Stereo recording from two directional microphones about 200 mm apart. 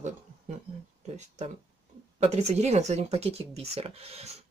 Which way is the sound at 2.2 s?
35° right (ahead or behind).